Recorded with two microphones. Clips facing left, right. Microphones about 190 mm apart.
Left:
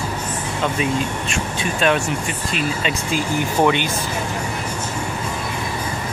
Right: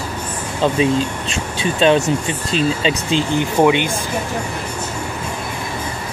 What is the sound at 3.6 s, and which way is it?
Speech, 15° right (ahead or behind).